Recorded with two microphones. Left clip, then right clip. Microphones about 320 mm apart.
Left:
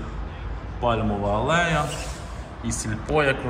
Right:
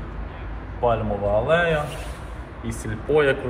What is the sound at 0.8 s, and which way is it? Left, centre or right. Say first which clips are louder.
Speech: right 2 dB; centre.